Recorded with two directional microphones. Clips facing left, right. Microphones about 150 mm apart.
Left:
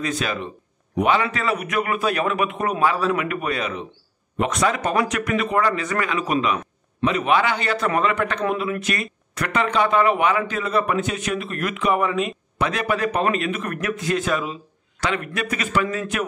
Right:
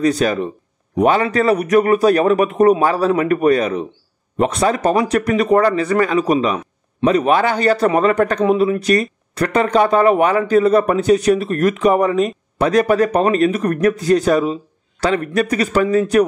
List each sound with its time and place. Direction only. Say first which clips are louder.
0.0 s speech: right 9 dB; 40° right (ahead or behind)